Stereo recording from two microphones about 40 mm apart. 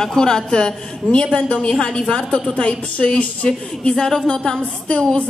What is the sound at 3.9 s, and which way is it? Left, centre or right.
A woman's voice, centre.